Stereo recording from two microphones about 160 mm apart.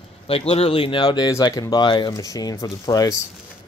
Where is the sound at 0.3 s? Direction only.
40° left (ahead or behind).